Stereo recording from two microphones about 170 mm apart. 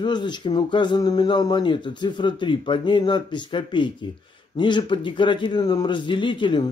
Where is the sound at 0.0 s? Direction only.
25° left (ahead or behind).